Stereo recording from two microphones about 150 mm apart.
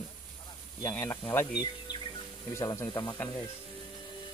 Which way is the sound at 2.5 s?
20° left (ahead or behind).